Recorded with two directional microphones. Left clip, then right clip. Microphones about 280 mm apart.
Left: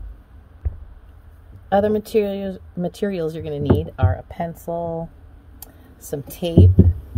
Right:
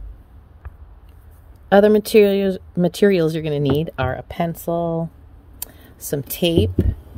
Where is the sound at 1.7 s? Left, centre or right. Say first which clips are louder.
Right 5 dB; right.